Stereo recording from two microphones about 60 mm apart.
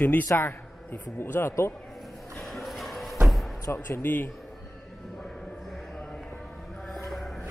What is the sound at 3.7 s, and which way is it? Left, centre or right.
Speech, left.